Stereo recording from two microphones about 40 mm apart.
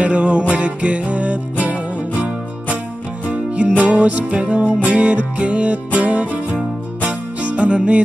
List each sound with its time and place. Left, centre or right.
0.0 s music: right